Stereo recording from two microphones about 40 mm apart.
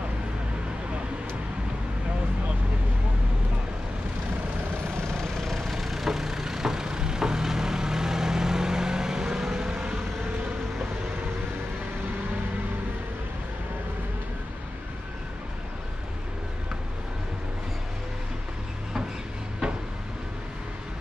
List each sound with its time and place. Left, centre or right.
5.0 s vehicle: centre
5.8 s vehicle: centre; by 9.9 s right
19.6 s vehicle: right